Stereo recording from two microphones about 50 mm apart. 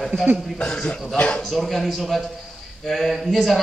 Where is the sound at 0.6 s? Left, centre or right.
Centre.